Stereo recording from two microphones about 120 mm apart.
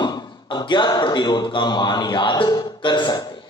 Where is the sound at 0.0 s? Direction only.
35° left (ahead or behind).